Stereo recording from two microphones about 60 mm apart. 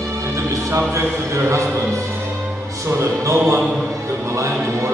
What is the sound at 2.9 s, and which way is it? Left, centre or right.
Music, right.